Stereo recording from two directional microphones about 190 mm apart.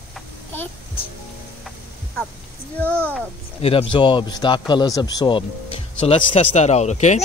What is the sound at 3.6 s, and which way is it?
Speech, 30° left (ahead or behind).